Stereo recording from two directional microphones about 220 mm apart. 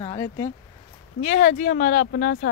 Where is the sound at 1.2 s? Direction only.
30° left (ahead or behind).